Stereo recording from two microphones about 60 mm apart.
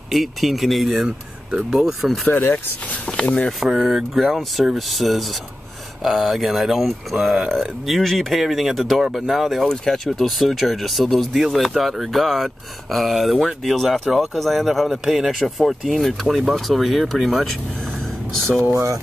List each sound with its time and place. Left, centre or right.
0.1 s speech: centre
3.1 s speech: centre
3.6 s speech: centre